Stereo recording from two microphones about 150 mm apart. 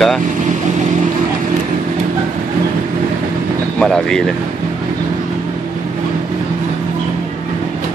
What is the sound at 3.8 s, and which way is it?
Speech, 5° left (ahead or behind).